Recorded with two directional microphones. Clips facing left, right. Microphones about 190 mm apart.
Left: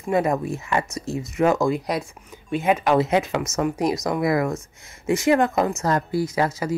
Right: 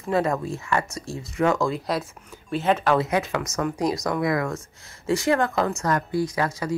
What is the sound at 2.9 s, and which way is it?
A woman's voice, 25° left (ahead or behind).